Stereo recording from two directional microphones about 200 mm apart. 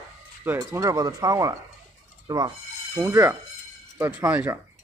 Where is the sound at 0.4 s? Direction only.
15° right (ahead or behind).